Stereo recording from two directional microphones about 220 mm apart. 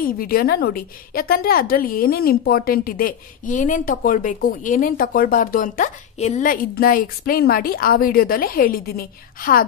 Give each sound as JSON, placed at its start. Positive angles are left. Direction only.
{"t": 0.0, "sound": "a woman's voice", "side_deg": 40}